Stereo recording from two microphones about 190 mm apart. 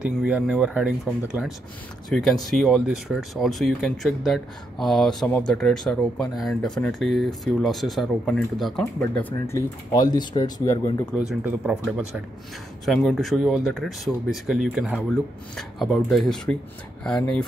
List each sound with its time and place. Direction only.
0.0 s speech: 5° right (ahead or behind); by 11.1 s 15° left (ahead or behind)
11.2 s speech: 5° right (ahead or behind)
12.8 s speech: centre (ahead or behind)